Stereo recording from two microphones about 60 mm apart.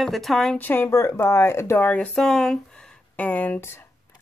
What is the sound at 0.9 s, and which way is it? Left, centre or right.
Speech, left.